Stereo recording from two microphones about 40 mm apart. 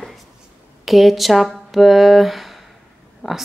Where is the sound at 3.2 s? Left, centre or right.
Centre.